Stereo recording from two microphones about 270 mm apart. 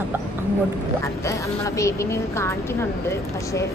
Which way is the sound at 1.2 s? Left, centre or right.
Centre.